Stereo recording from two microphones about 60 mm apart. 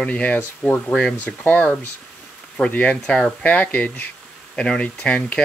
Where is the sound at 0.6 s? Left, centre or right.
Centre.